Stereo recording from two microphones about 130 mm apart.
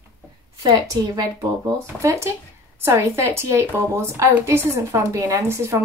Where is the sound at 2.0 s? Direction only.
20° right (ahead or behind).